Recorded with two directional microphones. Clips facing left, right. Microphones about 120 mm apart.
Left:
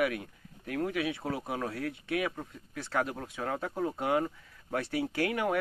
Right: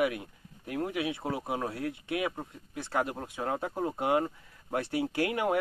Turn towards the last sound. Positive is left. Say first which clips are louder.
# right 1 dB
turn(degrees=-15)  # may be behind; listen again after turning